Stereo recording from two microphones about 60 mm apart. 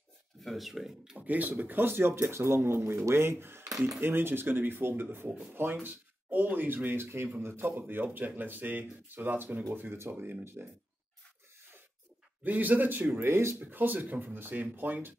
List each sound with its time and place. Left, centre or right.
0.4 s speech: centre
1.1 s speech: right
12.4 s speech: right
13.3 s speech: right
13.6 s speech: right